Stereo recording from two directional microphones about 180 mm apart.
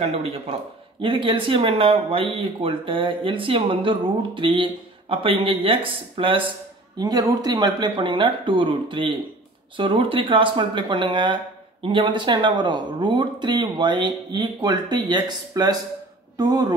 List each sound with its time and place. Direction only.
0.0 s speech: 35° right (ahead or behind)